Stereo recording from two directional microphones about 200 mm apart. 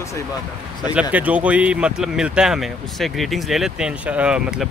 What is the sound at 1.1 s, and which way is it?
Speech, 5° right (ahead or behind).